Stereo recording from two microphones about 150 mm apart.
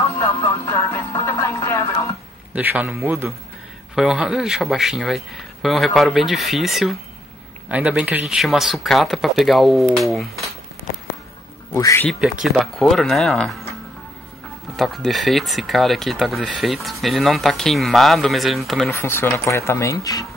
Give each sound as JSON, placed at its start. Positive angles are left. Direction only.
{"t": 0.0, "sound": "music", "side_deg": 20}
{"t": 2.5, "sound": "a man's voice", "side_deg": -10}
{"t": 3.9, "sound": "a man's voice", "side_deg": -5}
{"t": 11.7, "sound": "speech", "side_deg": 20}
{"t": 12.1, "sound": "speech", "side_deg": 0}
{"t": 14.8, "sound": "speech", "side_deg": 0}
{"t": 18.9, "sound": "speech", "side_deg": 15}